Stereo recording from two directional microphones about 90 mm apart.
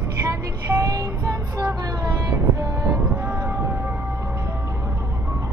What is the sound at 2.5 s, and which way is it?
Music, 40° right (ahead or behind).